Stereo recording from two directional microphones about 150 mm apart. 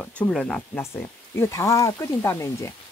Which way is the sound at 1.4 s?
20° left (ahead or behind).